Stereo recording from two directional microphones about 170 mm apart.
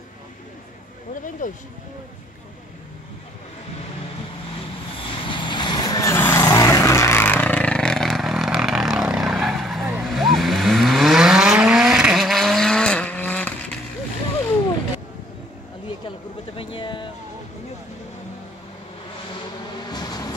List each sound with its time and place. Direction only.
1.4 s speech: 50° left (ahead or behind)
4.9 s vehicle: 30° left (ahead or behind); by 13.5 s 10° left (ahead or behind)
16.5 s a sound: 30° left (ahead or behind)
19.9 s vehicle: 25° left (ahead or behind)